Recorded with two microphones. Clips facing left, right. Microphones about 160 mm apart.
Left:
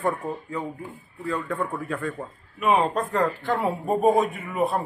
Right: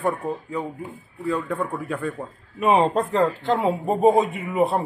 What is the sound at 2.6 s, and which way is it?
A man's voice, 30° right (ahead or behind).